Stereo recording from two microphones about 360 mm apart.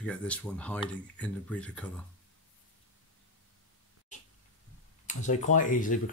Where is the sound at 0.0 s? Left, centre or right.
Centre.